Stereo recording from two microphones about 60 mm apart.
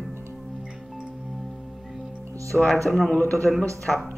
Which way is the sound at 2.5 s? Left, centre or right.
Centre.